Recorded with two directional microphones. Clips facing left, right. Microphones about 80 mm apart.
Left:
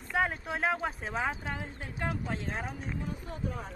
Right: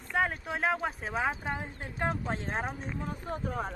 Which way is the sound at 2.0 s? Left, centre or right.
Right.